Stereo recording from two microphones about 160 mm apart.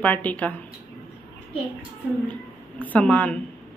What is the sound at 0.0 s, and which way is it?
Speech, 10° left (ahead or behind).